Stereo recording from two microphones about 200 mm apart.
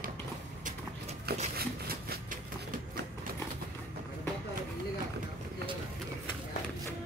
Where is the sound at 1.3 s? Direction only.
55° right (ahead or behind).